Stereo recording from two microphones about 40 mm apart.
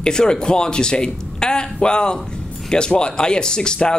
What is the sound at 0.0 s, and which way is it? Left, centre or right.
Speech, centre.